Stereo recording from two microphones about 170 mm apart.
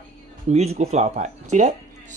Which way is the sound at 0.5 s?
40° right (ahead or behind).